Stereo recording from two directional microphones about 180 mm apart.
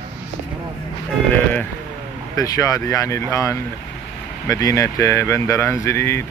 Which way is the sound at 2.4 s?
20° left (ahead or behind).